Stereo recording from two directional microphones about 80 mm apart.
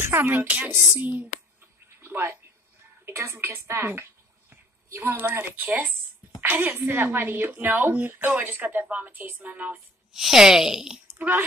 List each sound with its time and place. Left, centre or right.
0.0 s a woman's voice: right
2.0 s a sound: right
3.1 s a woman's voice: right
10.1 s a woman's voice: centre
11.1 s a child's voice: right